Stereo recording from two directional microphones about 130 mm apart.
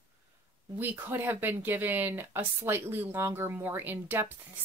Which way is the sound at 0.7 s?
15° right (ahead or behind).